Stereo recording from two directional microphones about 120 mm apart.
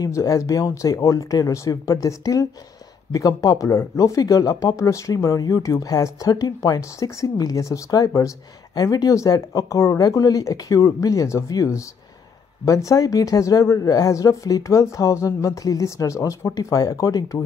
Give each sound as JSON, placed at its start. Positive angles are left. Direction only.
{"t": 0.0, "sound": "speech", "side_deg": 25}